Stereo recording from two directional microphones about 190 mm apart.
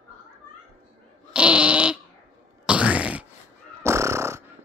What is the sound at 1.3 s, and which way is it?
Dog, 5° right (ahead or behind).